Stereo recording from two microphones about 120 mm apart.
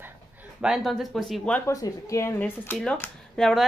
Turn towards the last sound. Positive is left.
turn(degrees=5)  # may be behind; listen again after turning